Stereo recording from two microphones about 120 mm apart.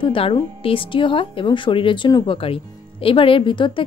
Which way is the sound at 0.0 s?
45° left (ahead or behind).